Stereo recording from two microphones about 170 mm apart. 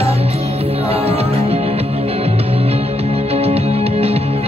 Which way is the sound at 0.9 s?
35° right (ahead or behind).